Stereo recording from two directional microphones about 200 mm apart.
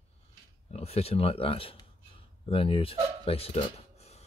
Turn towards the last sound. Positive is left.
turn(degrees=30)  # may be behind; listen again after turning